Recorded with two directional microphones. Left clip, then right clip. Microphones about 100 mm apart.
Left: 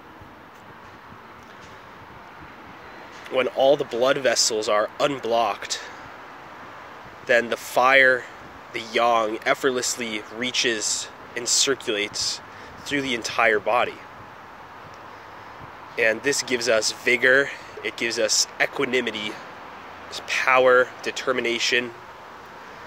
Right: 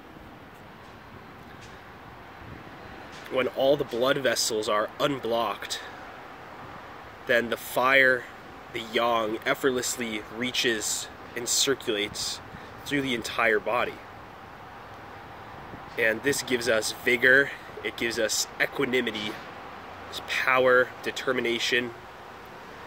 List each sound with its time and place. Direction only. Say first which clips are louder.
3.3 s speech: left 5 dB; 30° right (ahead or behind)
7.2 s speech: left 4 dB; 30° right (ahead or behind)
16.0 s speech: left 4 dB; 30° right (ahead or behind)